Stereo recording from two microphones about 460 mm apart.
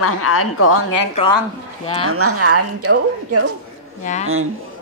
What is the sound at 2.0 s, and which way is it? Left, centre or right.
A woman's voice, right.